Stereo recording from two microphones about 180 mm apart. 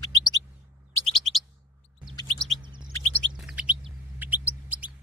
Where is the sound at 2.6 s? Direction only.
25° right (ahead or behind).